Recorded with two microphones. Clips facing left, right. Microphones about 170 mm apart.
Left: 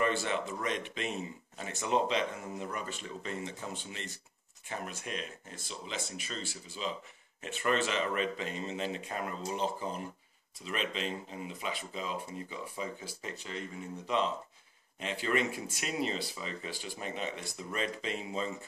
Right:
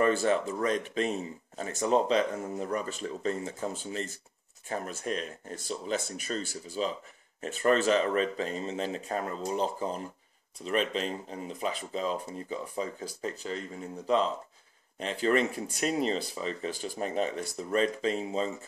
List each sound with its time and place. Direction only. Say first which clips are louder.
0.0 s speech: right 6 dB; 40° right (ahead or behind)
15.0 s speech: right 5 dB; 40° right (ahead or behind)